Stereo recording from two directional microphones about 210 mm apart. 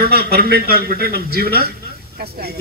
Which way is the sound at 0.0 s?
50° right (ahead or behind).